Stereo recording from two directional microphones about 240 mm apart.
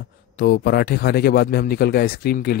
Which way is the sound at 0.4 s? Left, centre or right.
Left.